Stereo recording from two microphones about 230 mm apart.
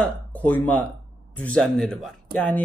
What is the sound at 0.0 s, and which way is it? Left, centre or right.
Speech, centre.